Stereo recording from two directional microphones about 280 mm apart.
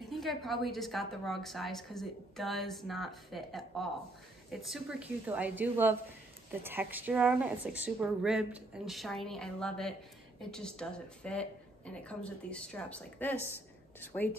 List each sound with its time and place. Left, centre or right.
0.1 s a woman's voice: centre